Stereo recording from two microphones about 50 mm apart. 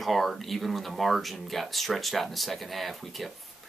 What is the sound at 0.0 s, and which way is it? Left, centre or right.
Speech, centre.